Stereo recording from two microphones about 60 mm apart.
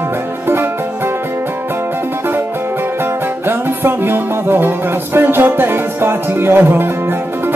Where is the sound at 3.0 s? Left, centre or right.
Right.